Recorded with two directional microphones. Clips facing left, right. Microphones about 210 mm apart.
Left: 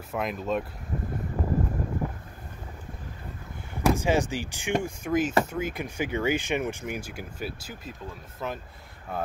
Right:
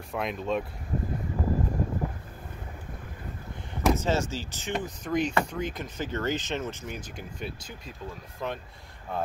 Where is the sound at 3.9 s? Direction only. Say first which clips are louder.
Left 3 dB; 15° left (ahead or behind).